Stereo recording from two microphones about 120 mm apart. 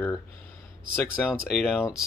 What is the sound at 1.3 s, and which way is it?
Speech, 5° right (ahead or behind).